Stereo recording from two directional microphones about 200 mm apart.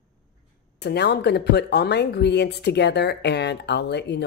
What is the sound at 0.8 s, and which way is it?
Speech, 55° left (ahead or behind).